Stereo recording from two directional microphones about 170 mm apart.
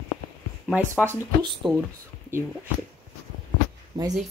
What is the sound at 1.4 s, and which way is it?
Speech, 25° right (ahead or behind).